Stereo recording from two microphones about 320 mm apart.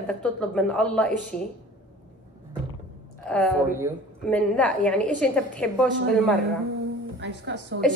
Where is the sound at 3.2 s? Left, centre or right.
Centre.